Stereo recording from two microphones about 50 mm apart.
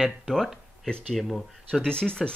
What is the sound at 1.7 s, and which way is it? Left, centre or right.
Speech, centre.